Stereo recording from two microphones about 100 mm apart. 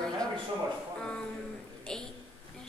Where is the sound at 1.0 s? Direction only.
5° left (ahead or behind).